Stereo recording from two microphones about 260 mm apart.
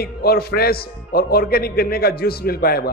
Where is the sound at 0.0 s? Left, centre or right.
Left.